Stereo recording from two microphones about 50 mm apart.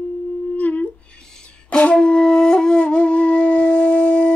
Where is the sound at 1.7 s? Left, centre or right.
Left.